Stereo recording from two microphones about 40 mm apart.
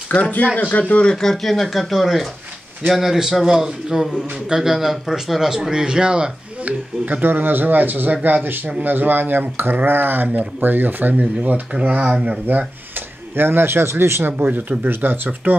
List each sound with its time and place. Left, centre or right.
0.1 s speech: left
1.0 s a man's voice: centre; by 6.3 s right
6.6 s speech: right
10.2 s speech: right
14.4 s speech: right